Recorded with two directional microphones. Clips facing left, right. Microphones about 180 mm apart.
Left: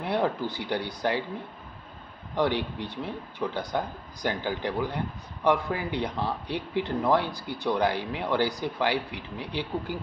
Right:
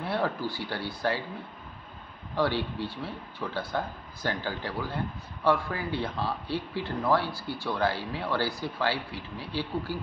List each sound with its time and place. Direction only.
0.0 s speech: 20° left (ahead or behind)
2.3 s speech: 20° left (ahead or behind)